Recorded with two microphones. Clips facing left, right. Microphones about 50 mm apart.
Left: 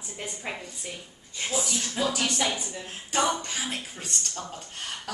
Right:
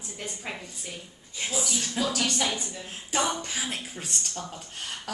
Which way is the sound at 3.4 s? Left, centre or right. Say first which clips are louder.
Even; centre.